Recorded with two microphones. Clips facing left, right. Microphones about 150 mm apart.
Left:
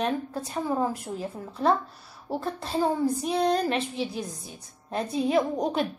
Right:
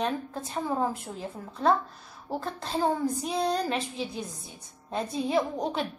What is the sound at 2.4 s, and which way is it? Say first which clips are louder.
A woman's voice: left 2 dB; 5° left (ahead or behind).